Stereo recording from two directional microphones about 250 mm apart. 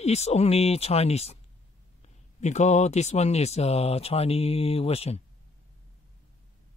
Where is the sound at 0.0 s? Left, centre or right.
Left.